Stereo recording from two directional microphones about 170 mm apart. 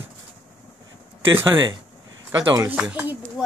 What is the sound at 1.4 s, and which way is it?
Speech, 25° right (ahead or behind).